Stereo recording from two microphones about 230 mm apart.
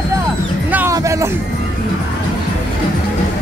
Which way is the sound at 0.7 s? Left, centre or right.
Centre.